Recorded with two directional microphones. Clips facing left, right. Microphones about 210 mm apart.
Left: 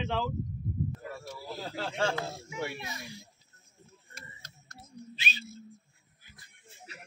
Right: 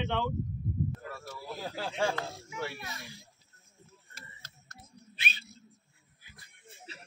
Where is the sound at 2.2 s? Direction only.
15° left (ahead or behind).